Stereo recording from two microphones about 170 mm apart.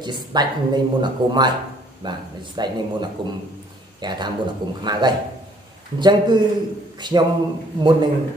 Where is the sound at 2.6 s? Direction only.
25° right (ahead or behind).